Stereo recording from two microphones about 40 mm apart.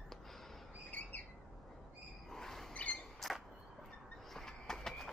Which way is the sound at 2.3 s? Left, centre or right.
Centre.